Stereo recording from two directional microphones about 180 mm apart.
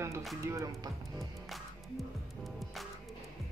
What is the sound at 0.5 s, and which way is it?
Speech, 15° right (ahead or behind).